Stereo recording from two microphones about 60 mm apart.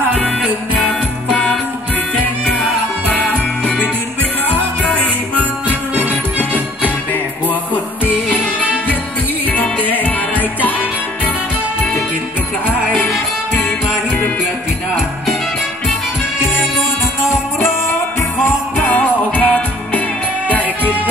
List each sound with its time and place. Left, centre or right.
0.1 s music: centre
3.1 s music: left
9.5 s music: left
13.5 s music: left
18.8 s music: left